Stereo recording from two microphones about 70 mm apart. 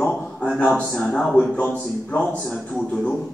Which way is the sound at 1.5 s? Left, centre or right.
Left.